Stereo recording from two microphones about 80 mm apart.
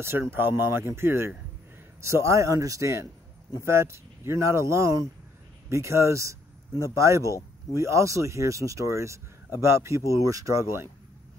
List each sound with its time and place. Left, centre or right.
0.0 s speech: right